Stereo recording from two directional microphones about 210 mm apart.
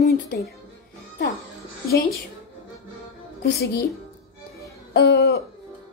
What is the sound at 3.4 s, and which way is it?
Speech, 50° left (ahead or behind).